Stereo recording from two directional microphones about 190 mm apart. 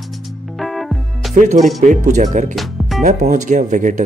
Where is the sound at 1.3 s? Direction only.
40° right (ahead or behind).